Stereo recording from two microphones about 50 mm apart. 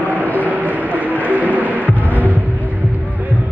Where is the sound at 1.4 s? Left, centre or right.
Left.